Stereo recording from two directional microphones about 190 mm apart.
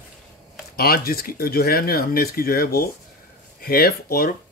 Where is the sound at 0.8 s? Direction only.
50° left (ahead or behind).